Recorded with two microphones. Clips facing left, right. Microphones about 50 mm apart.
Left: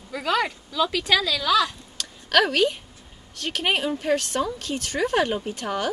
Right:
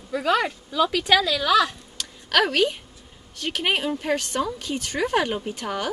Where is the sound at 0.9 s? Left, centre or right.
Centre.